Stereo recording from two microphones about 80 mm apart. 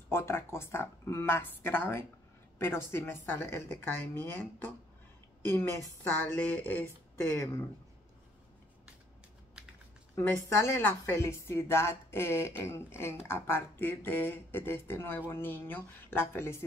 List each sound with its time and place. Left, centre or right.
0.1 s a woman's voice: left
7.2 s a woman's voice: left
10.1 s a woman's voice: left